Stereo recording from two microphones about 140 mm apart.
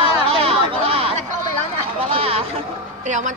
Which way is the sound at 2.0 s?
40° right (ahead or behind).